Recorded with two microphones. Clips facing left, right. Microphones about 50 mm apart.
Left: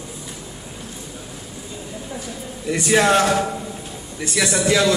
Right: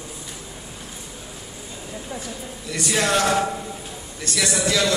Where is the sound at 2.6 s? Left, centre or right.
Left.